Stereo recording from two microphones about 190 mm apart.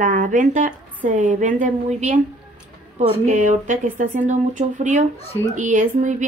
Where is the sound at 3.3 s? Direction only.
40° right (ahead or behind).